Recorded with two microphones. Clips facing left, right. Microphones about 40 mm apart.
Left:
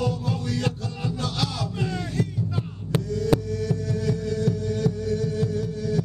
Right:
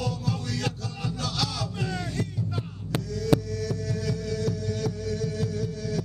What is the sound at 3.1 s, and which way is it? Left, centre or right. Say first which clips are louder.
Music: left 1 dB; left.